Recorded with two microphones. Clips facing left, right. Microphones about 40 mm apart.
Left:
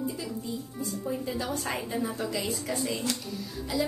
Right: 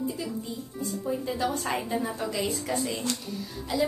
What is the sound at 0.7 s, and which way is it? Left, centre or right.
A woman's voice, centre.